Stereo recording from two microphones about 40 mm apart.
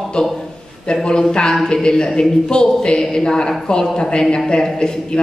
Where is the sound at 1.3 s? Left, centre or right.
Centre.